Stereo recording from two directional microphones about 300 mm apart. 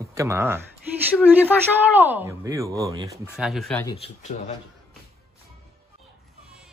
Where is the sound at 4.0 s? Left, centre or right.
Centre.